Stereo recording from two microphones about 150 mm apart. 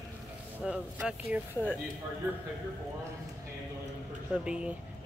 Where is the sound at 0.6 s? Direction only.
5° right (ahead or behind).